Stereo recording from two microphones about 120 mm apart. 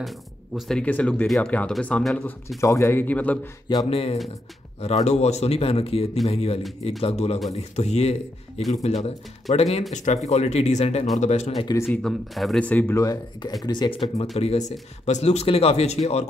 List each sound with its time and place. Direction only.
0.6 s speech: 5° left (ahead or behind)
2.6 s speech: 25° left (ahead or behind)
3.9 s speech: 55° left (ahead or behind)
9.9 s speech: 80° left; by 11.6 s 65° left (ahead or behind)
12.0 s speech: centre (ahead or behind)
12.6 s speech: 15° left (ahead or behind)
12.9 s speech: 25° left (ahead or behind)
13.7 s speech: 40° left (ahead or behind)
14.3 s speech: 70° left (ahead or behind)